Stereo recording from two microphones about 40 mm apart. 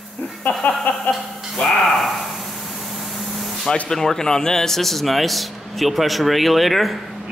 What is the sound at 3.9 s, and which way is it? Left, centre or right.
A man's voice, centre.